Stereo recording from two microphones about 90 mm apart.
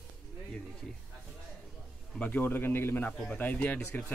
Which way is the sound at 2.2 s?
20° left (ahead or behind).